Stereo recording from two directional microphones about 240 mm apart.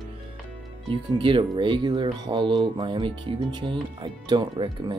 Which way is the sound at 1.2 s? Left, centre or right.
Centre.